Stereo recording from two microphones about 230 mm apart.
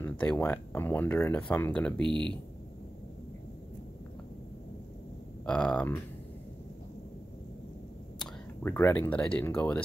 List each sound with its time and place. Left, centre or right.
0.0 s speech: centre
2.0 s speech: right
5.4 s speech: centre
8.2 s speech: centre